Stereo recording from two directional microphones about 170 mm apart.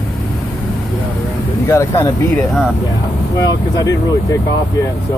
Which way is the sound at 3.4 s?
20° left (ahead or behind).